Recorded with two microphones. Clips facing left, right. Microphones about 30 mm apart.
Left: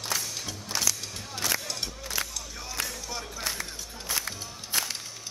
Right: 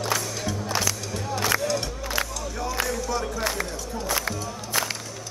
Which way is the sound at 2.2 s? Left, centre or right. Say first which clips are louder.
Right 5 dB; right.